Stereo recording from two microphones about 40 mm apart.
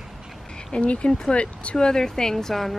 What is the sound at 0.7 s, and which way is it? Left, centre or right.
Speech, left.